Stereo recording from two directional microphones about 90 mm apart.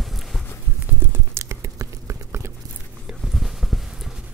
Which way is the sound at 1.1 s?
30° right (ahead or behind).